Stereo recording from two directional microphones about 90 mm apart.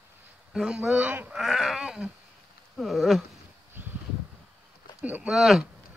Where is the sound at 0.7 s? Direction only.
15° right (ahead or behind).